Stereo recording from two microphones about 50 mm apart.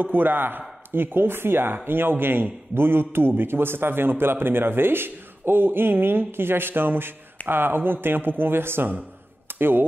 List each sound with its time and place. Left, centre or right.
0.0 s a man's voice: right